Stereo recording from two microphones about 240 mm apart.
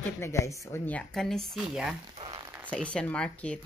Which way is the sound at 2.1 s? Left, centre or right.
Right.